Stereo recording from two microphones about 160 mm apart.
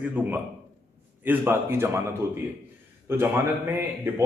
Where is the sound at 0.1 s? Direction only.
10° right (ahead or behind).